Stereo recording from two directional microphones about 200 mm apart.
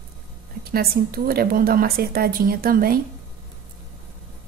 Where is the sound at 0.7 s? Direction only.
50° right (ahead or behind).